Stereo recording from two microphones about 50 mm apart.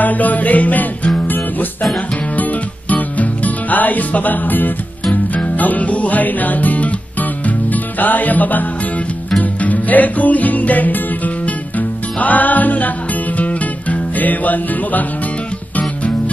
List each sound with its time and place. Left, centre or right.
0.0 s music: left